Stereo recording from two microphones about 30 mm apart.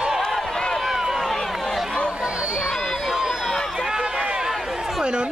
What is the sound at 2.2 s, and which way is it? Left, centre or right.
Run, right.